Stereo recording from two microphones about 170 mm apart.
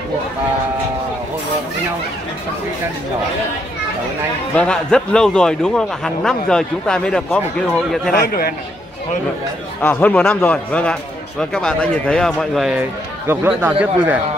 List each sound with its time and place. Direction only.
4.6 s a man's voice: 5° left (ahead or behind)
8.1 s a man's voice: 60° left (ahead or behind)
9.8 s a man's voice: 10° left (ahead or behind); by 14.1 s 10° right (ahead or behind)